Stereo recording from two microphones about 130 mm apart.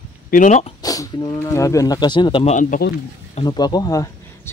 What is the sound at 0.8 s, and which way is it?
Speech, 30° left (ahead or behind).